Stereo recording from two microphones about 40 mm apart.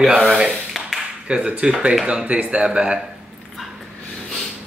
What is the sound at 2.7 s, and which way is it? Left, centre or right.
Speech, right.